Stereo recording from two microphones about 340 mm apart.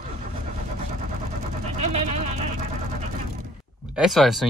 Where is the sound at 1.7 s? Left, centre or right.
Centre.